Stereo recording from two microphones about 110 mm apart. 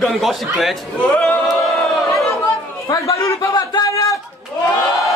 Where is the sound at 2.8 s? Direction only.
30° left (ahead or behind).